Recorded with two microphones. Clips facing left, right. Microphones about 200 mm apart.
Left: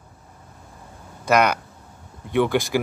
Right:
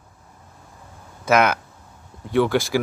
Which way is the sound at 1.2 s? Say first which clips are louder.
Right 1 dB; 5° right (ahead or behind).